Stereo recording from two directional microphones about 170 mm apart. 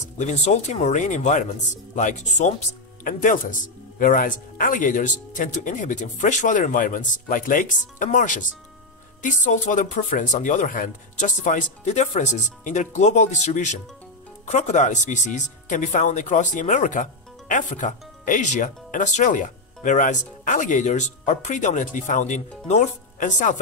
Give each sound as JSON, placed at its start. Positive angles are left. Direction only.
{"t": 0.2, "sound": "speech", "side_deg": 40}